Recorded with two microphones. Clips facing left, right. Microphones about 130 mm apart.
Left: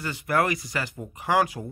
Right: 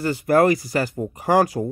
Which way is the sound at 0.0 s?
35° right (ahead or behind).